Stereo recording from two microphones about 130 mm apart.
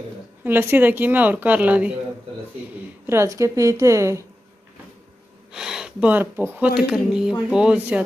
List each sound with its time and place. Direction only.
0.4 s a woman's voice: 15° right (ahead or behind)
3.1 s a woman's voice: 20° right (ahead or behind)
5.5 s a woman's voice: 5° right (ahead or behind)